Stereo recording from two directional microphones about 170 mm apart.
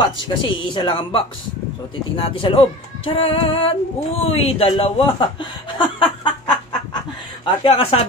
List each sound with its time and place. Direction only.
0.3 s speech: 25° left (ahead or behind)